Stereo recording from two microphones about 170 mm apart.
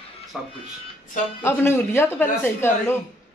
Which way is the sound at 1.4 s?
15° left (ahead or behind).